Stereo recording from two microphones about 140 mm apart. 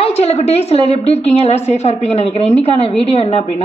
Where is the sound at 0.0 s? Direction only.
45° left (ahead or behind).